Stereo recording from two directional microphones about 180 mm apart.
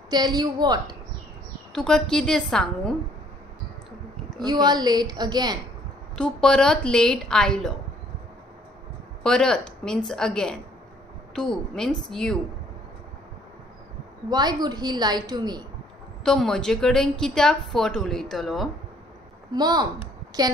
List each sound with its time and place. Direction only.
0.1 s a woman's voice: 25° right (ahead or behind)
1.7 s a woman's voice: 5° left (ahead or behind)
4.4 s a woman's voice: 25° right (ahead or behind)
6.1 s a woman's voice: 5° left (ahead or behind)
9.2 s a woman's voice: 5° left (ahead or behind)
14.3 s a woman's voice: 20° right (ahead or behind)
16.3 s a woman's voice: 5° left (ahead or behind)
19.5 s a woman's voice: 25° right (ahead or behind)